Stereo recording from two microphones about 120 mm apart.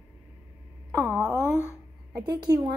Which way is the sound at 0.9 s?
20° right (ahead or behind).